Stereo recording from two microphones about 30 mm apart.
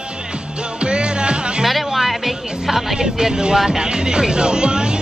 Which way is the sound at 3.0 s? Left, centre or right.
Right.